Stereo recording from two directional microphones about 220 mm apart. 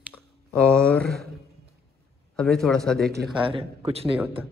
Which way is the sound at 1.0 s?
45° right (ahead or behind).